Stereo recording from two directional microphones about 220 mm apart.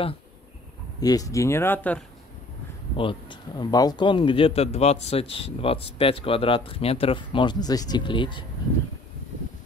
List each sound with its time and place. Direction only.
1.0 s speech: 15° left (ahead or behind)
3.0 s speech: 20° left (ahead or behind)